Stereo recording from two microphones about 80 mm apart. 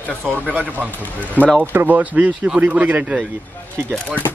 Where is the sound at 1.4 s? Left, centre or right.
Left.